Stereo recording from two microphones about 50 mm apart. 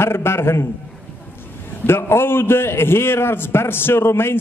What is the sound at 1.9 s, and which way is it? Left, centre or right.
A man's voice, left.